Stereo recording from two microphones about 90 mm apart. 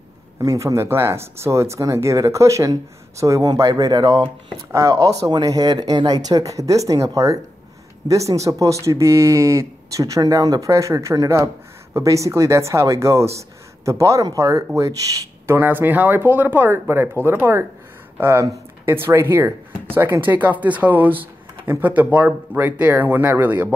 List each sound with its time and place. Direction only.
0.4 s speech: 40° right (ahead or behind); by 4.3 s 55° right (ahead or behind)
4.7 s speech: 40° right (ahead or behind)
20.2 s speech: 20° right (ahead or behind)